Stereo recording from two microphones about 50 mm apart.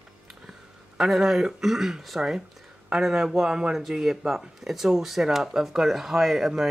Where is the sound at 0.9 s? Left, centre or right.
Centre.